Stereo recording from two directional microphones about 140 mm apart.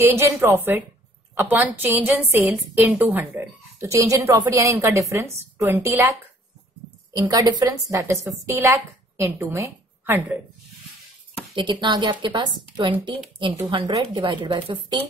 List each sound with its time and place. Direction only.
0.1 s a woman's voice: 20° right (ahead or behind)
7.2 s a woman's voice: 30° right (ahead or behind)
11.5 s a woman's voice: 35° right (ahead or behind)